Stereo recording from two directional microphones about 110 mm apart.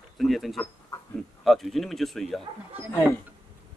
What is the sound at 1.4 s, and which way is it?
Speech, centre (ahead or behind).